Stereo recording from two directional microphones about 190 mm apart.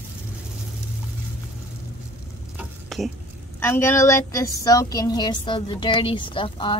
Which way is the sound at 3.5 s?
10° left (ahead or behind).